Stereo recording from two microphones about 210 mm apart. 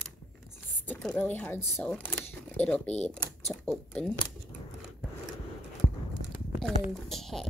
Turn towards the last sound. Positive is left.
turn(degrees=0)  # may be behind; listen again after turning